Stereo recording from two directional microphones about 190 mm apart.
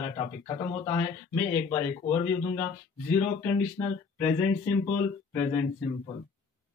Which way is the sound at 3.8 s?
15° left (ahead or behind).